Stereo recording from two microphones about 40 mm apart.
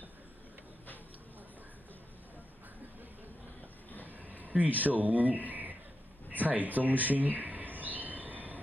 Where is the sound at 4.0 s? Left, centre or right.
Right.